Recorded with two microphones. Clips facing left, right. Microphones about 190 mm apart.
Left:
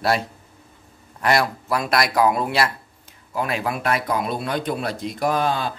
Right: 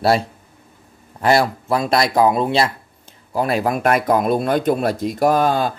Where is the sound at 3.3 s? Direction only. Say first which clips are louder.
Right 6 dB; 35° right (ahead or behind).